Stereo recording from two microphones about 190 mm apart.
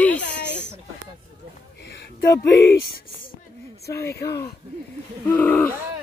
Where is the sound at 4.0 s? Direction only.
60° left (ahead or behind).